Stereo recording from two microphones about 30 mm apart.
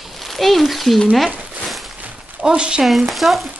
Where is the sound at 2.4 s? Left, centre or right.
Right.